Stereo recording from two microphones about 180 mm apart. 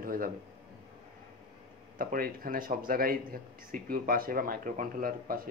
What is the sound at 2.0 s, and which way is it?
Speech, 55° right (ahead or behind).